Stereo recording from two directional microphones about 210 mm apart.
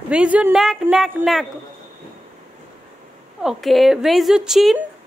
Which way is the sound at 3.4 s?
Centre (ahead or behind).